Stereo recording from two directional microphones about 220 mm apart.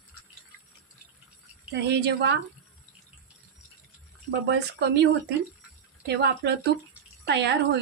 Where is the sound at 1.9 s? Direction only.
50° right (ahead or behind).